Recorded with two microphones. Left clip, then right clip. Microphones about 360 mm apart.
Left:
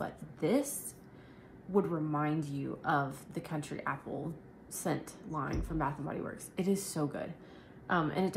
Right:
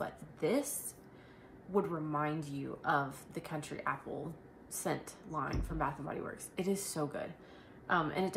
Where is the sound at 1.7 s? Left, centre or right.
Centre.